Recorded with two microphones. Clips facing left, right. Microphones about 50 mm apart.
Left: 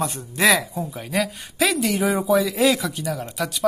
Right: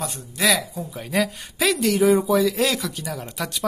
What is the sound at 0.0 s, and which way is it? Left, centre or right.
Speech, left.